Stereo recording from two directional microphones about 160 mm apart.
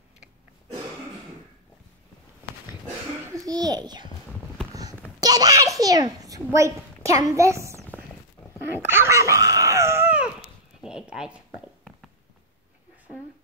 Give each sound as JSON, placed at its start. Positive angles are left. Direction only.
{"t": 3.3, "sound": "a child's voice", "side_deg": -25}
{"t": 5.2, "sound": "a child's voice", "side_deg": -25}
{"t": 8.8, "sound": "a sound", "side_deg": -15}